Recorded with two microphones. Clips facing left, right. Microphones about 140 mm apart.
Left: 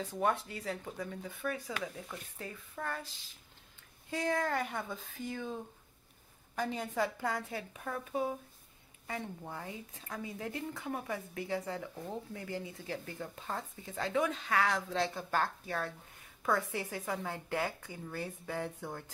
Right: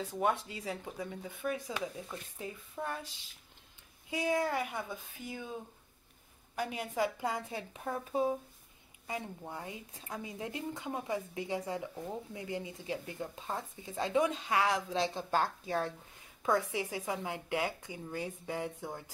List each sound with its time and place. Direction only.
0.0 s speech: 15° right (ahead or behind)
4.1 s speech: 10° right (ahead or behind); by 8.4 s 25° right (ahead or behind)
9.0 s speech: 15° right (ahead or behind)